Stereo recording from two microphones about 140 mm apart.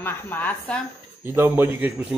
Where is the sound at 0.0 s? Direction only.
15° left (ahead or behind).